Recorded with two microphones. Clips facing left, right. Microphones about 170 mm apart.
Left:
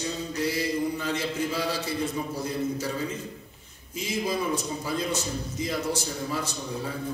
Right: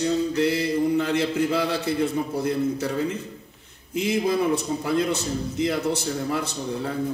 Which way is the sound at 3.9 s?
60° right (ahead or behind).